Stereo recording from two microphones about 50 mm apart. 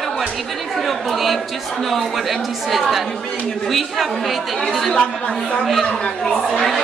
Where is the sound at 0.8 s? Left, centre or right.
Centre.